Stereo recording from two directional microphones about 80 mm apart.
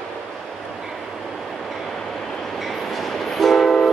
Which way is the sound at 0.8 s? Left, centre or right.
Centre.